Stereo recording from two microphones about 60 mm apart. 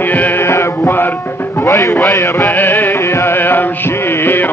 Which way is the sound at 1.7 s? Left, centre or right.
Left.